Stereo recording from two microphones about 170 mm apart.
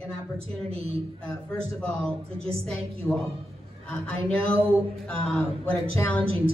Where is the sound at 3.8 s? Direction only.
5° left (ahead or behind).